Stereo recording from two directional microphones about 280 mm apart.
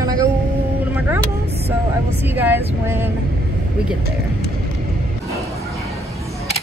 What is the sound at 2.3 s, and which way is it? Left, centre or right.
Speech, centre.